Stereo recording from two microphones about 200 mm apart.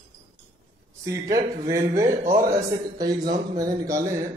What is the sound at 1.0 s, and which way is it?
Music, 15° right (ahead or behind).